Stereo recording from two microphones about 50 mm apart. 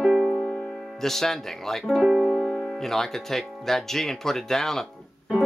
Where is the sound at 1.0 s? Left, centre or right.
Centre.